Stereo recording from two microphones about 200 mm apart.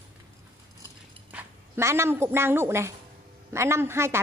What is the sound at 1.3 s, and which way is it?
A woman's voice, 15° right (ahead or behind).